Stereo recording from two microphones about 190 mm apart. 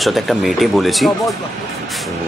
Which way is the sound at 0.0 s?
Centre (ahead or behind).